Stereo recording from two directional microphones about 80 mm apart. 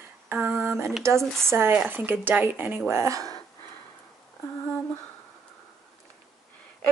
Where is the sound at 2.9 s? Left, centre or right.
Right.